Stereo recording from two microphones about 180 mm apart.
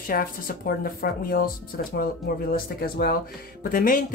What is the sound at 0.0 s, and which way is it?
Speech, 50° left (ahead or behind).